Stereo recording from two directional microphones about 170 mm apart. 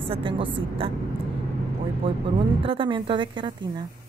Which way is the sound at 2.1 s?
30° right (ahead or behind).